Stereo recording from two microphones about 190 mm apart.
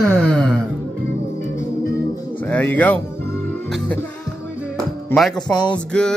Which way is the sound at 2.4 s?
10° left (ahead or behind).